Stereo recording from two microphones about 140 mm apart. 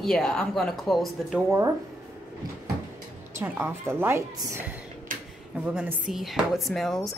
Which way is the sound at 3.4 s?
15° right (ahead or behind).